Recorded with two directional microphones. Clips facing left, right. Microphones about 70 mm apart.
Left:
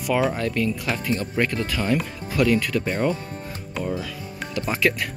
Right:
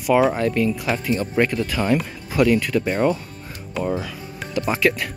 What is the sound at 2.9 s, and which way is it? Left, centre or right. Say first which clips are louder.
Speech: right 4 dB; right.